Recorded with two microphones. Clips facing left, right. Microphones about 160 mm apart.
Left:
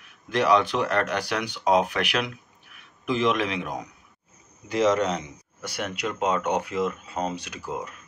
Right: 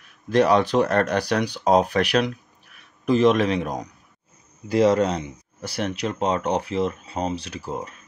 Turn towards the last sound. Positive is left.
turn(degrees=-30)  # may be behind; listen again after turning